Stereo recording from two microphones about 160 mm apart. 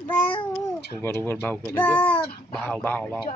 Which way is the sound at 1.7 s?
10° left (ahead or behind).